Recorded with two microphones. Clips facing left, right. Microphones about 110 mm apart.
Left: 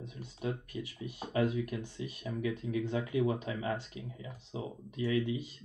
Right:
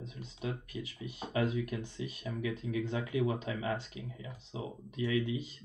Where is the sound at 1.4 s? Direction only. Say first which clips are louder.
Left 2 dB; 40° left (ahead or behind).